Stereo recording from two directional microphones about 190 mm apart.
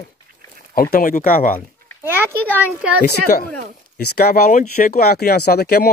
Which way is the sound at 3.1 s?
45° left (ahead or behind).